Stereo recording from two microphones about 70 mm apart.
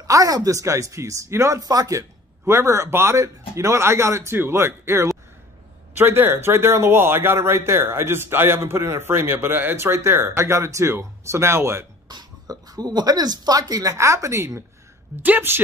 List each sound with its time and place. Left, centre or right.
0.0 s speech: right
1.6 s a man's voice: right
12.1 s speech: right
13.9 s speech: right
15.2 s speech: right